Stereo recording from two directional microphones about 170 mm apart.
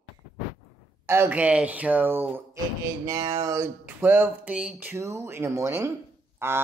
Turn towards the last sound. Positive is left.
turn(degrees=-15)  # may be behind; listen again after turning